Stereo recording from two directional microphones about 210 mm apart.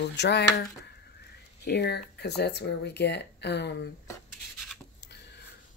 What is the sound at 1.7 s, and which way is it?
Speech, 50° left (ahead or behind).